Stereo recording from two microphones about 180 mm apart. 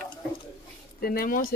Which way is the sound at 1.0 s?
55° left (ahead or behind).